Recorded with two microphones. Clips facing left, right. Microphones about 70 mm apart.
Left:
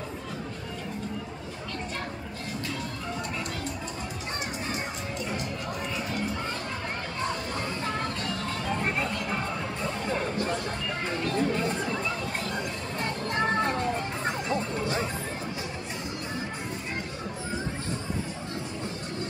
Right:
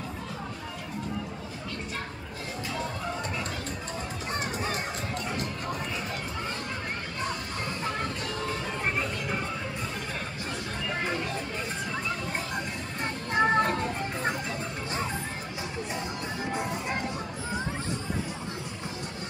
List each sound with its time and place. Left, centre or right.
13.0 s music: centre
13.6 s music: centre